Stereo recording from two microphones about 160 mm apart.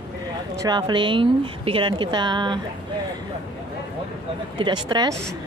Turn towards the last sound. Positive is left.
turn(degrees=-25)  # may be behind; listen again after turning